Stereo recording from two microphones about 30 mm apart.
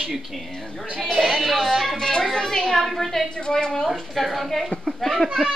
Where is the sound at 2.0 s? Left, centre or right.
Left.